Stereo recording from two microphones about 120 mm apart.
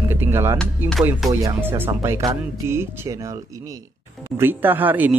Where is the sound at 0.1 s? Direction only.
20° right (ahead or behind).